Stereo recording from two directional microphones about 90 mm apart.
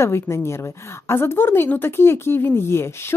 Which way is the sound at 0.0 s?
30° left (ahead or behind).